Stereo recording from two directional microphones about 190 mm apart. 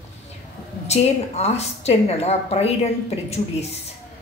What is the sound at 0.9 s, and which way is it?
A woman's voice, 35° left (ahead or behind).